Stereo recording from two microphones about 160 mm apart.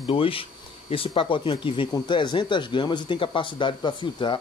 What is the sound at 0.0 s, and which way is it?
Speech, 35° left (ahead or behind).